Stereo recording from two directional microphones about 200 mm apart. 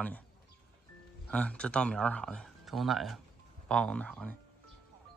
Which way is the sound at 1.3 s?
5° left (ahead or behind).